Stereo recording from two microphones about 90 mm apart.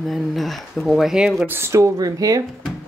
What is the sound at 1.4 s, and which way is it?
Speech, 30° right (ahead or behind).